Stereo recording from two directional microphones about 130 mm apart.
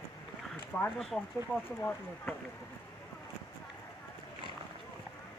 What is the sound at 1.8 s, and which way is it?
Speech, 15° left (ahead or behind).